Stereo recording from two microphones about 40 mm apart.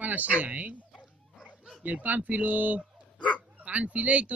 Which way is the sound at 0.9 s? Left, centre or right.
Centre.